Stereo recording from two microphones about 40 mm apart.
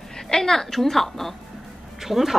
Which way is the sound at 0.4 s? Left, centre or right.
Centre.